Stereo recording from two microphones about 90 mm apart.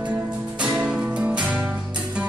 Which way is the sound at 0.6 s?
10° right (ahead or behind).